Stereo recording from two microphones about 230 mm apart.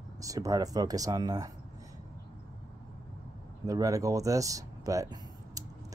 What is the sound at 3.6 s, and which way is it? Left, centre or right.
Speech, centre.